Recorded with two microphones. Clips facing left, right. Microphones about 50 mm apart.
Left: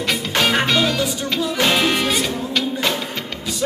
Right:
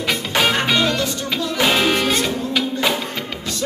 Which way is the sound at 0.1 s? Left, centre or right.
Centre.